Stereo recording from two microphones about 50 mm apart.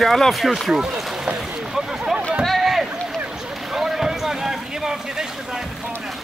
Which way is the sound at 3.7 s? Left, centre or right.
Centre.